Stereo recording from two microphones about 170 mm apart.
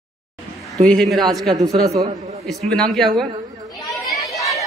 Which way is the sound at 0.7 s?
Centre (ahead or behind).